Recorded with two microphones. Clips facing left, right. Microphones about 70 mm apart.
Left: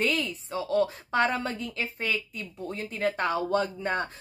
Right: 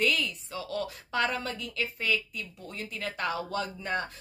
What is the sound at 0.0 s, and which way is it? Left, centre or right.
A woman's voice, left.